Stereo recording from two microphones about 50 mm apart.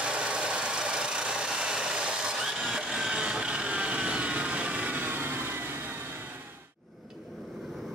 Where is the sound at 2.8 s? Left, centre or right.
Centre; by 6.0 s right.